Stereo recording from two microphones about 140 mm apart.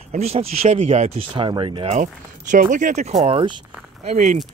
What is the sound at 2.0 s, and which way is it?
Speech, 65° right (ahead or behind).